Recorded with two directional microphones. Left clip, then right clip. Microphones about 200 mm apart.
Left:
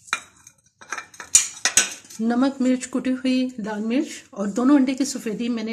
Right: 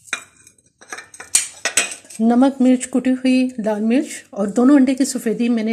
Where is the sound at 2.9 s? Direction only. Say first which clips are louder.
Right 6 dB; 20° right (ahead or behind).